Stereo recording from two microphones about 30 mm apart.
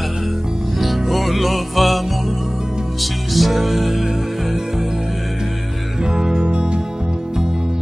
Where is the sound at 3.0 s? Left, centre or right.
Centre.